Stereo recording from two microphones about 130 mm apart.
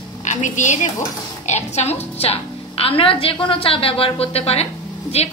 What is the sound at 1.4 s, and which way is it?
A woman's voice, 60° left (ahead or behind).